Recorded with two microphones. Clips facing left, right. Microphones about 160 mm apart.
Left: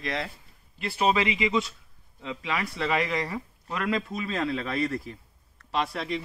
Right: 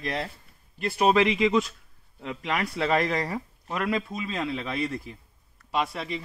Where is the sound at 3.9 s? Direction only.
20° right (ahead or behind).